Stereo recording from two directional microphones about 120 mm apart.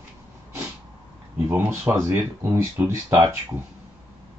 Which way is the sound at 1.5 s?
20° right (ahead or behind).